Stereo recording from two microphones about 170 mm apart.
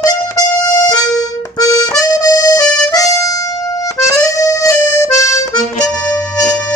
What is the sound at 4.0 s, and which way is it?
Accordion, 20° left (ahead or behind).